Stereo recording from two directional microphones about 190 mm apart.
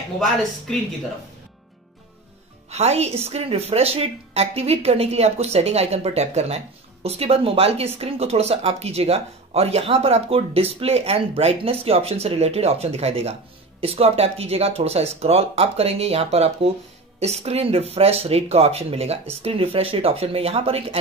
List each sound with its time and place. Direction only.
0.2 s a woman's voice: centre (ahead or behind)
2.7 s speech: 35° right (ahead or behind)